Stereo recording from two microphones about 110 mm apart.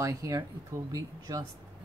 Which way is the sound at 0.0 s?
30° right (ahead or behind).